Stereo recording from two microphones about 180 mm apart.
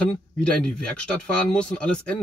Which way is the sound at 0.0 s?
5° left (ahead or behind).